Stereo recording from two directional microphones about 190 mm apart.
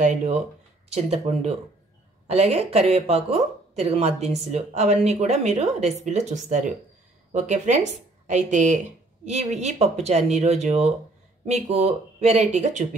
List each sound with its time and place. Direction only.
0.0 s speech: 40° right (ahead or behind)